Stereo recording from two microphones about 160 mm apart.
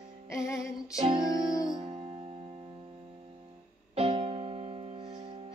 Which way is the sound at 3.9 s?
35° right (ahead or behind).